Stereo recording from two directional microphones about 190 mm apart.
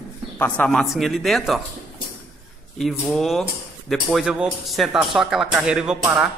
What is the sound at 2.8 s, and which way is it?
Speech, centre (ahead or behind).